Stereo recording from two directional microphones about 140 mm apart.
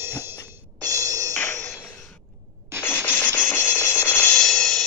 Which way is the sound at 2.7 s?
20° right (ahead or behind).